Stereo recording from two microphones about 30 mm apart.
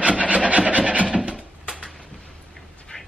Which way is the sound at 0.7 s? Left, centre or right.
Right.